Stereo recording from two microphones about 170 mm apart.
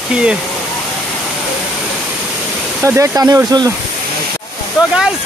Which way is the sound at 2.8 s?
15° right (ahead or behind).